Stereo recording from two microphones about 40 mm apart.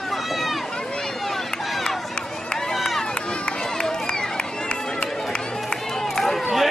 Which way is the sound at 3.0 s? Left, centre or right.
Left.